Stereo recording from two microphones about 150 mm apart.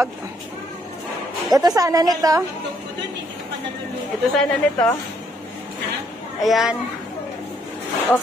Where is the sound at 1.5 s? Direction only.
25° right (ahead or behind).